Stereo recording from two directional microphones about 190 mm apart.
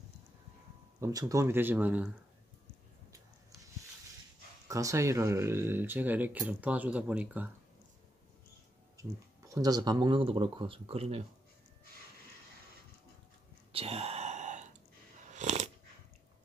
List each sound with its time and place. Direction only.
1.0 s speech: 15° right (ahead or behind)
4.6 s speech: 15° right (ahead or behind)
8.9 s speech: 15° right (ahead or behind)
13.7 s a sound: 30° right (ahead or behind)
15.3 s dog: 40° right (ahead or behind)